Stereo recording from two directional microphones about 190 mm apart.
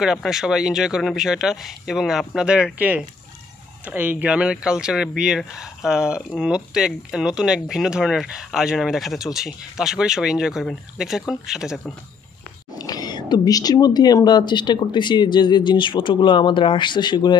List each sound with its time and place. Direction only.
0.0 s speech: 5° right (ahead or behind)
12.7 s speech: 20° left (ahead or behind)